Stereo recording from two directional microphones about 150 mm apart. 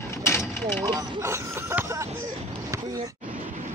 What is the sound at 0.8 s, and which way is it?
Speech, 20° right (ahead or behind).